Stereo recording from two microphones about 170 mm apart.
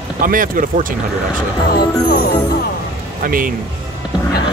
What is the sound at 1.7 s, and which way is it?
Speech, 65° left (ahead or behind).